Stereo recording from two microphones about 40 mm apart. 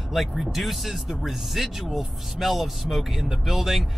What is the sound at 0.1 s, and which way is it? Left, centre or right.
A man's voice, centre.